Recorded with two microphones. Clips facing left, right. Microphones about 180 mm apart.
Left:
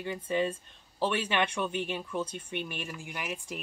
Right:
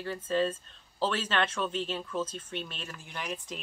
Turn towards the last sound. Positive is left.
turn(degrees=10)  # may be behind; listen again after turning